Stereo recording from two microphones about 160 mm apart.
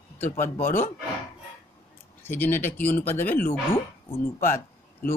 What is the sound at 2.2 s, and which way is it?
Speech, 10° left (ahead or behind).